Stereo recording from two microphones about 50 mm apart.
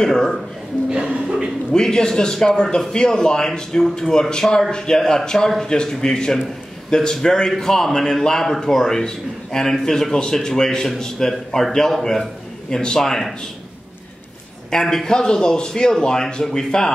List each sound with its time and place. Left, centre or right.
0.0 s a man's voice: centre
0.8 s a sound: centre
1.7 s a man's voice: centre
14.7 s a man's voice: centre